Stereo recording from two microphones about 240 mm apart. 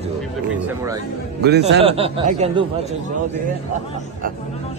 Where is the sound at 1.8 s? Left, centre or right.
Right.